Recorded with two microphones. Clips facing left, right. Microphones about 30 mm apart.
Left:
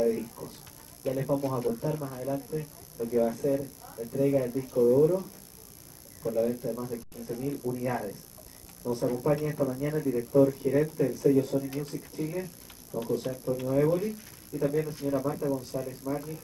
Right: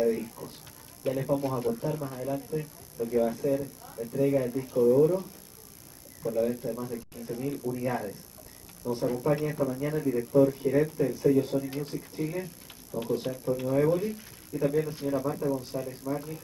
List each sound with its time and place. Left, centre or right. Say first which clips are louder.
0.0 s speech: even; centre
13.3 s speech: right 1 dB; centre